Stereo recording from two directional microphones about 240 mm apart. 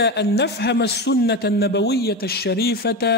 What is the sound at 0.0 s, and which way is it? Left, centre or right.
A man's voice, left.